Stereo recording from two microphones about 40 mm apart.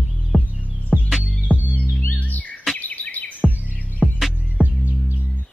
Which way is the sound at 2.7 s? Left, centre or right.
Left.